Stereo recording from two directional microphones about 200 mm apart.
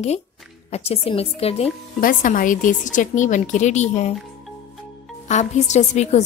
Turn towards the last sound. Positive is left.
turn(degrees=35)  # may be behind; listen again after turning